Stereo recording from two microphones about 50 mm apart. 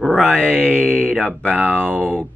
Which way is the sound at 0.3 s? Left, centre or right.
Left.